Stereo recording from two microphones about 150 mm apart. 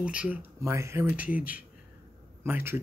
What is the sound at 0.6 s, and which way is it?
Speech, 20° right (ahead or behind).